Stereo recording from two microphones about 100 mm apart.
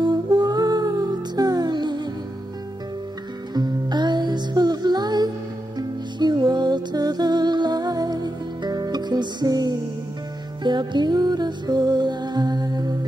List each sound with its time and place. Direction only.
0.0 s music: 45° right (ahead or behind)
3.5 s music: 45° right (ahead or behind)